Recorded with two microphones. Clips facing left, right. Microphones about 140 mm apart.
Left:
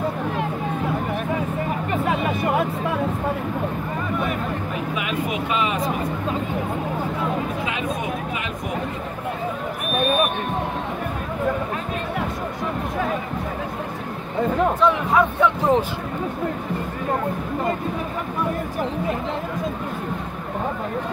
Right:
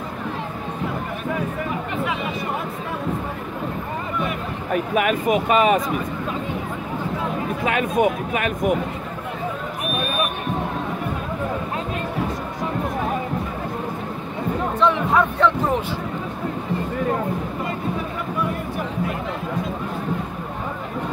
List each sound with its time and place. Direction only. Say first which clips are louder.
4.9 s speech: right 8 dB; 50° right (ahead or behind)
7.6 s speech: right 7 dB; 55° right (ahead or behind)
14.8 s speech: right 4 dB; 5° left (ahead or behind)